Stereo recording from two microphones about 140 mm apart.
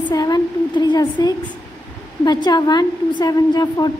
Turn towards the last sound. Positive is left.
turn(degrees=30)  # may be behind; listen again after turning